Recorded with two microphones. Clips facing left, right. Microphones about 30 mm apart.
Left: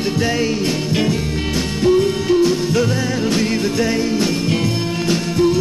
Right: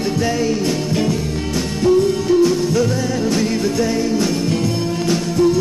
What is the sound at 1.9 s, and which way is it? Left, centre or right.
Music, left.